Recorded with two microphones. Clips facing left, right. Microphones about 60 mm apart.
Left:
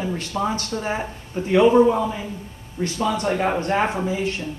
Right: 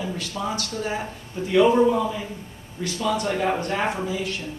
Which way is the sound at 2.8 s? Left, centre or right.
Left.